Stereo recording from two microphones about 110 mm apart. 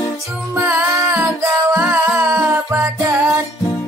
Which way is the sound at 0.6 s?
15° right (ahead or behind).